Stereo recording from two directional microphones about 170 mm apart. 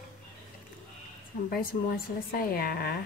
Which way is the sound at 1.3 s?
60° left (ahead or behind).